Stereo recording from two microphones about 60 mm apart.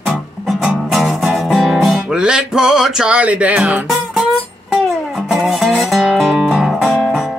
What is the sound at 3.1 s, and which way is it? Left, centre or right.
Speech, right.